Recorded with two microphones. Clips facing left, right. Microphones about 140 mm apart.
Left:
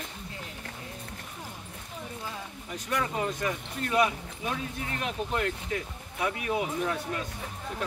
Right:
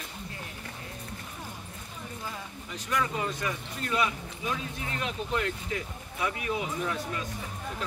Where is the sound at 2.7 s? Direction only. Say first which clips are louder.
Even; 45° left (ahead or behind).